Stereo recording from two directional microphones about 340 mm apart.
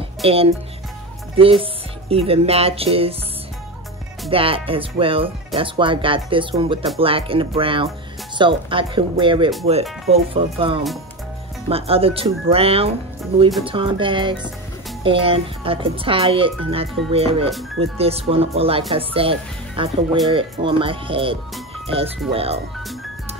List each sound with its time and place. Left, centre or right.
0.2 s speech: centre
1.3 s music: centre
4.3 s speech: centre